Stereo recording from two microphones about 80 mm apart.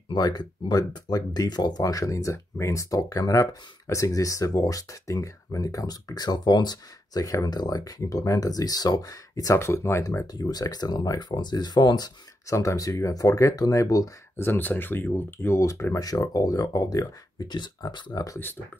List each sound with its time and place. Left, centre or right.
0.1 s speech: left
2.3 s speech: left
2.7 s speech: left
10.3 s speech: left
12.4 s speech: left
14.3 s speech: left
15.6 s speech: left